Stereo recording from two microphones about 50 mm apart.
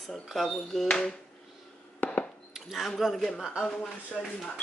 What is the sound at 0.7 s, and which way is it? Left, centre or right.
Speech, centre.